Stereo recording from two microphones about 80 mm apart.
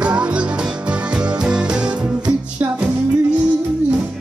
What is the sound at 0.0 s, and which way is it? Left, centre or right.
Music, centre.